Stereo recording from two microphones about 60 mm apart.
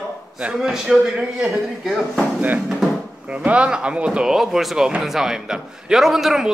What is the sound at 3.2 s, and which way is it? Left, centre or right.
Speech, right.